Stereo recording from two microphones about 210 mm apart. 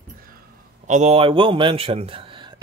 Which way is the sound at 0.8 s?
35° right (ahead or behind).